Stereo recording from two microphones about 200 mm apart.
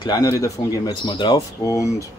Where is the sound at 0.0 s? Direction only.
20° left (ahead or behind).